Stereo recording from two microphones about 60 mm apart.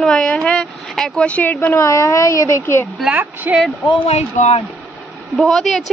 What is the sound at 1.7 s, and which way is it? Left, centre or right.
Speech, left.